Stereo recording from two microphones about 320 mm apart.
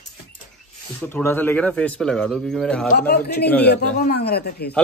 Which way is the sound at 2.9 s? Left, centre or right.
Left.